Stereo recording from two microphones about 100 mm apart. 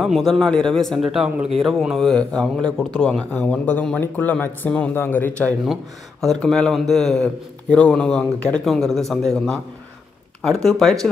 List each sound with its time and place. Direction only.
0.0 s a man's voice: centre (ahead or behind); by 5.5 s 20° left (ahead or behind)
6.2 s speech: 5° left (ahead or behind)